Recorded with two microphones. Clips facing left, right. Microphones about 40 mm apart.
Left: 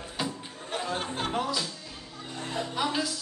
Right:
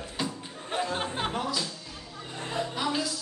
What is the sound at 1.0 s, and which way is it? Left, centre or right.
Music, centre.